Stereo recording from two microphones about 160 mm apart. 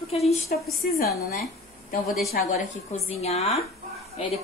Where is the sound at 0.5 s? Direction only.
60° left (ahead or behind).